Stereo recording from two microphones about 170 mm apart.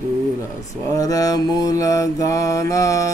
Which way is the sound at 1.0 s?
20° left (ahead or behind).